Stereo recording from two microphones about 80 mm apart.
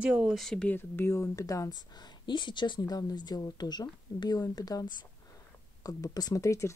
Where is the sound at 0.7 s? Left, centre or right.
Left.